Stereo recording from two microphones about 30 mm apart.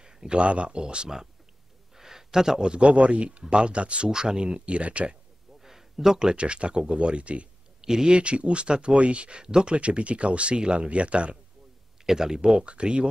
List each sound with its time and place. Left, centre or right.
0.0 s a sound: right
0.3 s speech: right
0.7 s speech: right
2.0 s a sound: centre
2.6 s speech: right
4.1 s speech: right
4.6 s speech: right
5.6 s a sound: centre
6.3 s speech: right
7.8 s speech: right
8.1 s speech: right
9.8 s speech: right
12.1 s speech: centre; by 13.1 s right